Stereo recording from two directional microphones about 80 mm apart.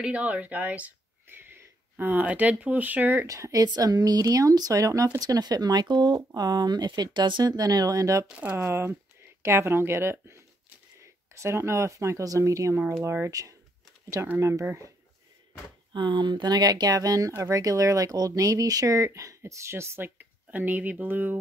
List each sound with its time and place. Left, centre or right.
0.0 s speech: centre
3.3 s speech: right
8.4 s speech: right
11.3 s speech: right
13.3 s speech: right
14.4 s speech: right
15.9 s speech: right
20.2 s speech: right